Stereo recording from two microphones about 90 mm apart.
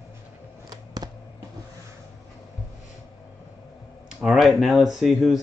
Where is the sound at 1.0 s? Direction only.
50° right (ahead or behind).